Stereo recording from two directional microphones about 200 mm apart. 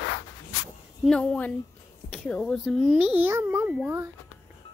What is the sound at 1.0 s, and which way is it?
A child's voice, 5° left (ahead or behind).